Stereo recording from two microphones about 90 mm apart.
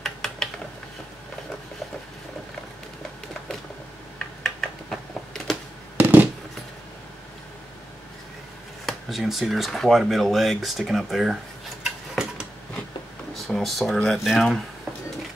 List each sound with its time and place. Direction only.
0.0 s mechanisms: 5° left (ahead or behind)
4.4 s a sound: 5° left (ahead or behind)
5.9 s a sound: 20° right (ahead or behind)
8.8 s speech: centre (ahead or behind)
11.8 s stir: 5° right (ahead or behind)
13.3 s speech: centre (ahead or behind)